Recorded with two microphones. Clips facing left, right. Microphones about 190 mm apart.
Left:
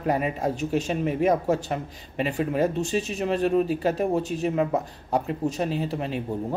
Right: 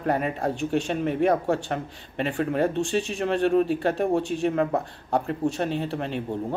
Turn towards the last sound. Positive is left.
turn(degrees=5)  # may be behind; listen again after turning